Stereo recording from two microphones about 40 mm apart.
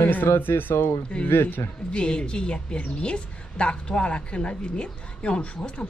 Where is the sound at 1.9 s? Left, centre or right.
Left.